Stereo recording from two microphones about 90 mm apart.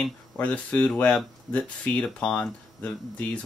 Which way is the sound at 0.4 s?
15° left (ahead or behind).